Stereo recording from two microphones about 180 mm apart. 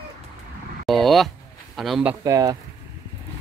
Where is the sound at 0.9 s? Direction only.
Centre (ahead or behind).